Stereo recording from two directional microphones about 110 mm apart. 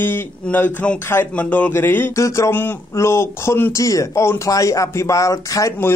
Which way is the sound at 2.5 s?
20° left (ahead or behind).